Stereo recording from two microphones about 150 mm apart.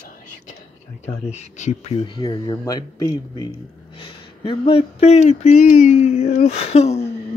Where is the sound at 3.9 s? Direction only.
35° left (ahead or behind).